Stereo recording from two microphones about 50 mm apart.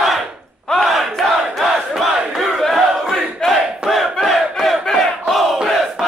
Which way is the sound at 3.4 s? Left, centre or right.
Centre.